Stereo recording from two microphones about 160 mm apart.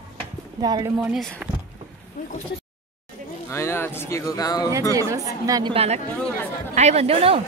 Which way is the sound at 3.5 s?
15° left (ahead or behind).